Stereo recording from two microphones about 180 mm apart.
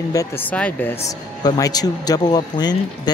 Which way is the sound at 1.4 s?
20° left (ahead or behind).